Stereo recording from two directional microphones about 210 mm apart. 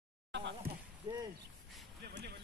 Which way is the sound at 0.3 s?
55° right (ahead or behind).